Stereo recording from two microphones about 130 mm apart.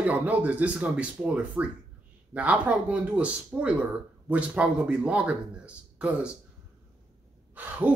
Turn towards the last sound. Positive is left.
turn(degrees=-10)  # may be behind; listen again after turning